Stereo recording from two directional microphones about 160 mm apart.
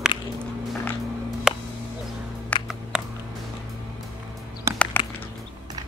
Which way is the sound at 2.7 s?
5° right (ahead or behind).